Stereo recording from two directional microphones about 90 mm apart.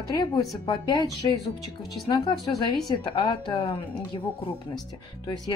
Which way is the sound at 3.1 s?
65° left (ahead or behind).